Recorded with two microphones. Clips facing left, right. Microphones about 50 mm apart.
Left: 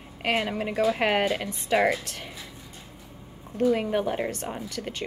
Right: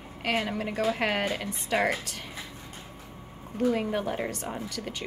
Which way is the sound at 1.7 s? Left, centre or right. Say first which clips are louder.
Left 4 dB; centre.